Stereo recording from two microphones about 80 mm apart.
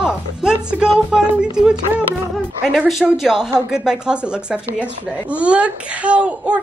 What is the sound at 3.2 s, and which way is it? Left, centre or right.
A woman's voice, centre.